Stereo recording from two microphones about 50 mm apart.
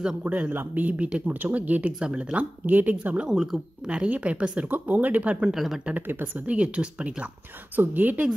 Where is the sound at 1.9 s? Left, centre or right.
Centre.